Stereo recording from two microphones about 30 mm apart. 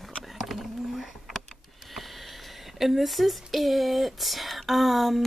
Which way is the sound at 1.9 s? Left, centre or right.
Centre.